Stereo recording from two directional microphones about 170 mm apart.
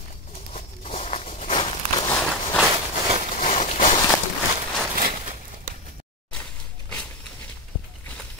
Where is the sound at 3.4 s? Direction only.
50° left (ahead or behind).